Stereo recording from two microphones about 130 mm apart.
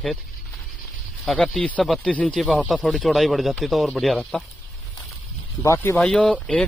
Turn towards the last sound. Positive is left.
turn(degrees=10)  # may be behind; listen again after turning